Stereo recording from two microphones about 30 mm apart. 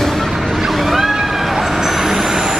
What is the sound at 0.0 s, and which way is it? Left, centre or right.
Vehicle, centre.